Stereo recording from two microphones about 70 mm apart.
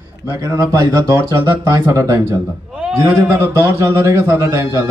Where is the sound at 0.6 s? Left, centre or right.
Right.